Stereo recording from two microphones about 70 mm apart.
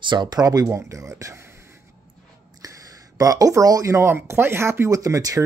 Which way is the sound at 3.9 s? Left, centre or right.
Right.